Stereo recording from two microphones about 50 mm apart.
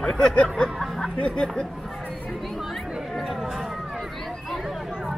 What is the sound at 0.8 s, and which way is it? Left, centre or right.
Music, centre.